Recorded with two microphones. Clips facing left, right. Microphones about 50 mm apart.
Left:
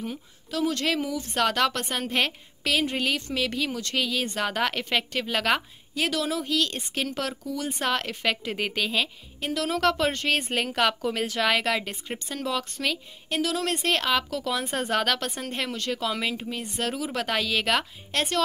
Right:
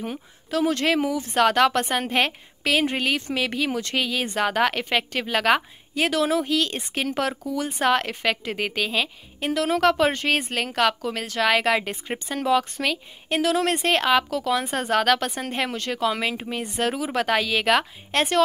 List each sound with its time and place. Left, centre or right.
0.0 s a woman's voice: right
1.1 s a woman's voice: centre
5.9 s a woman's voice: right
6.4 s speech: centre
9.4 s a woman's voice: right
10.5 s a woman's voice: centre
11.7 s speech: centre
13.3 s a woman's voice: right
13.7 s speech: centre
16.3 s speech: right
16.7 s speech: centre